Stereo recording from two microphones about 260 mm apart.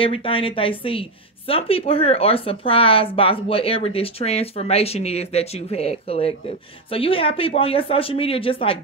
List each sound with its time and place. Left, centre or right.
0.0 s speech: left